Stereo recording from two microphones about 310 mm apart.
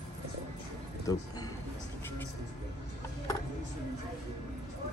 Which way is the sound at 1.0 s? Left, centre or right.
Centre.